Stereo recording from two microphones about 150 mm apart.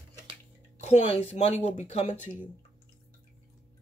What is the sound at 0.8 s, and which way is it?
Speech, 45° left (ahead or behind).